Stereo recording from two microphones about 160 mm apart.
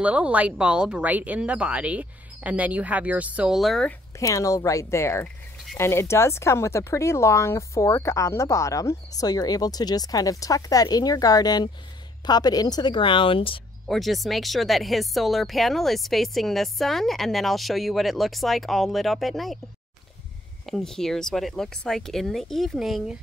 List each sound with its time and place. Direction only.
0.0 s speech: 10° right (ahead or behind)
4.2 s speech: 20° left (ahead or behind)
13.8 s speech: centre (ahead or behind)
20.6 s speech: centre (ahead or behind)